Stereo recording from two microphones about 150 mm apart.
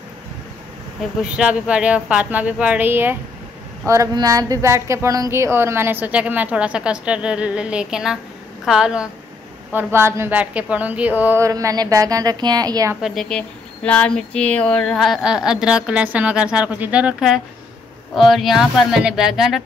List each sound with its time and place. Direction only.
1.3 s a woman's voice: 5° right (ahead or behind); by 12.9 s 25° right (ahead or behind)
13.0 s speech: centre (ahead or behind)